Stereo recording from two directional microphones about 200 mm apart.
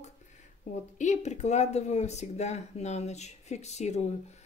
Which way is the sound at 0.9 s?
35° left (ahead or behind).